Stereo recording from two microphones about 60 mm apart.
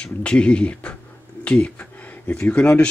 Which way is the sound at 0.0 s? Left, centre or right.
Centre.